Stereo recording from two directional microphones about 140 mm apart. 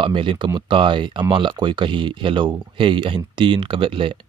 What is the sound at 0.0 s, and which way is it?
Speech, 35° right (ahead or behind).